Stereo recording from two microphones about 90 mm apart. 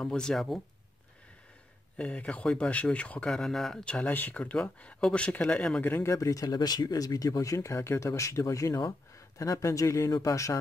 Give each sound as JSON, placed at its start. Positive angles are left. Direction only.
{"t": 0.0, "sound": "speech", "side_deg": 5}
{"t": 2.0, "sound": "speech", "side_deg": 15}
{"t": 5.8, "sound": "speech", "side_deg": 20}
{"t": 6.1, "sound": "speech", "side_deg": 40}